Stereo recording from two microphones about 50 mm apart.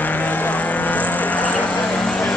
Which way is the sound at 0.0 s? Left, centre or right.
Left.